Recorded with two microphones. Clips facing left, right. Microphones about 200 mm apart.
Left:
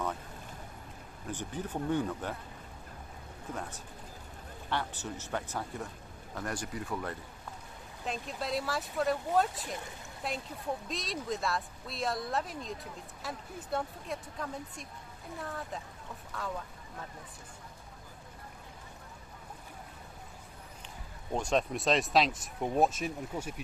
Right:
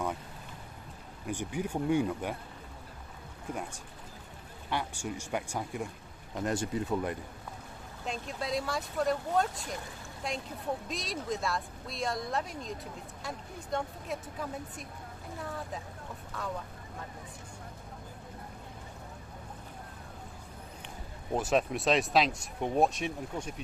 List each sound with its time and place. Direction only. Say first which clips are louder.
1.2 s speech: right 4 dB; 10° right (ahead or behind)
4.6 s speech: right 1 dB; 10° right (ahead or behind)
6.3 s speech: right 6 dB; 25° right (ahead or behind)
8.1 s speech: right 1 dB; centre (ahead or behind)
21.3 s speech: right 2 dB; 5° right (ahead or behind)